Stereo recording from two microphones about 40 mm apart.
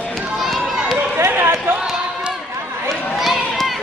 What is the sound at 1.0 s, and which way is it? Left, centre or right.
Run, right.